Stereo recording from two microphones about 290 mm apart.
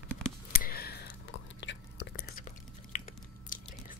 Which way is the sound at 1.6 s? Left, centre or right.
Left.